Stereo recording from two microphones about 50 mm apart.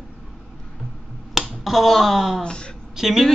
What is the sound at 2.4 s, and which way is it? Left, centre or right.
Speech, left.